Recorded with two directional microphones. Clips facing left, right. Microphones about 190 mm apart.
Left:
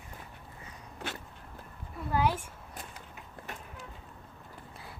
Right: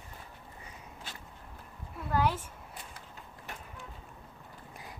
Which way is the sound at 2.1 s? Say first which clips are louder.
Left 1 dB; 10° left (ahead or behind).